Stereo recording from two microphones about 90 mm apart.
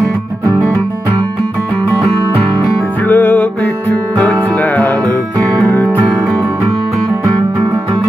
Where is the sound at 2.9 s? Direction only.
20° left (ahead or behind).